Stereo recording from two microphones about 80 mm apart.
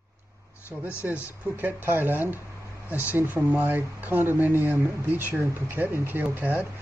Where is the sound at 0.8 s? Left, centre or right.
Right.